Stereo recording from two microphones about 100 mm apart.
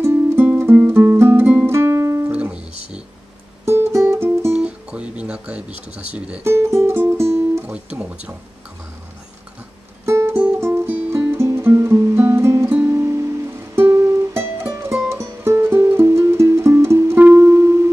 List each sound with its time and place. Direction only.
0.0 s music: 25° right (ahead or behind)
2.3 s music: 10° right (ahead or behind)
3.6 s music: 25° right (ahead or behind)
4.6 s music: 10° right (ahead or behind)
6.1 s speech: 10° right (ahead or behind)
6.4 s music: 25° right (ahead or behind)
7.6 s speech: 15° right (ahead or behind)
10.0 s music: 25° right (ahead or behind)